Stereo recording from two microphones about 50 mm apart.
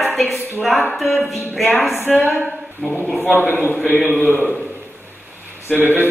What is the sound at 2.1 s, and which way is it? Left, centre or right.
Speech, left.